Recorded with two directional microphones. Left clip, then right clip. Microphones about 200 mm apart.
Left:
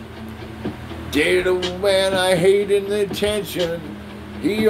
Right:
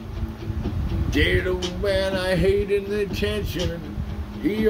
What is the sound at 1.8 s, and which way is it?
Speech, 20° right (ahead or behind).